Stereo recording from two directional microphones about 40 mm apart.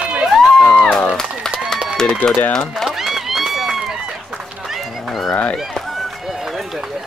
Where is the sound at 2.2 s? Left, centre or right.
Left.